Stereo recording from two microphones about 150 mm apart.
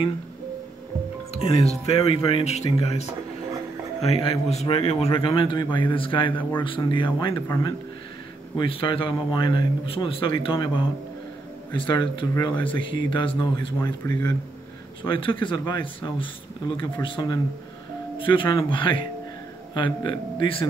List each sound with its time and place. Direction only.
1.3 s a man's voice: 45° left (ahead or behind)
8.5 s a man's voice: 35° left (ahead or behind)
12.5 s speech: 10° left (ahead or behind)
13.1 s a man's voice: 35° left (ahead or behind)